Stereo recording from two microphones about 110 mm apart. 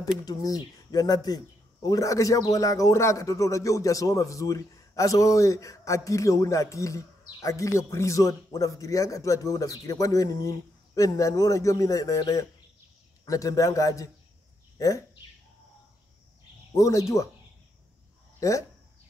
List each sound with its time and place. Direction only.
0.2 s a man's voice: 35° left (ahead or behind)
16.7 s speech: 30° left (ahead or behind)
18.4 s speech: 30° left (ahead or behind)